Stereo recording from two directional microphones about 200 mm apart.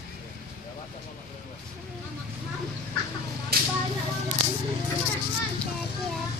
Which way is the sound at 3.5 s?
50° right (ahead or behind).